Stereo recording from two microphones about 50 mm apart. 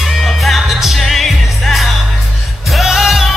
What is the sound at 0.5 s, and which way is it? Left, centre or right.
Music, centre.